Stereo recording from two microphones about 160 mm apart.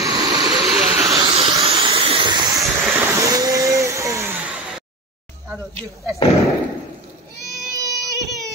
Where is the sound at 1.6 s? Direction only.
35° right (ahead or behind); by 4.5 s 15° right (ahead or behind).